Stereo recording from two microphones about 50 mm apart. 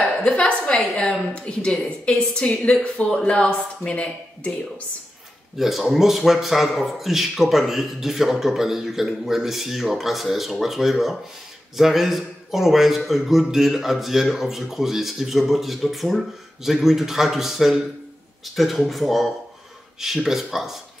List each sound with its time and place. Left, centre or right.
0.0 s a sound: left
0.9 s a woman's voice: left
5.6 s a man's voice: centre